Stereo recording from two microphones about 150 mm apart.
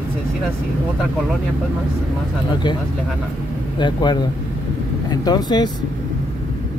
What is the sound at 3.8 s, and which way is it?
Speech, 30° left (ahead or behind).